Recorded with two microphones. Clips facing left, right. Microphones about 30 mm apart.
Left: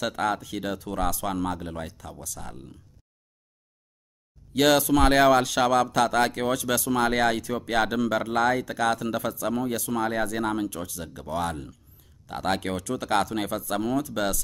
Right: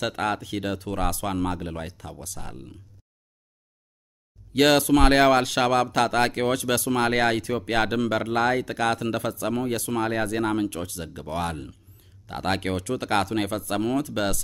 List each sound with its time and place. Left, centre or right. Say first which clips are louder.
0.0 s speech: even; right
1.9 s speech: right 1 dB; right
4.6 s speech: right 2 dB; right